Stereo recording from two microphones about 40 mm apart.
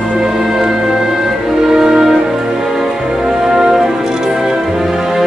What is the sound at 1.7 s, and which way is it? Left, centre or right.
Music, centre.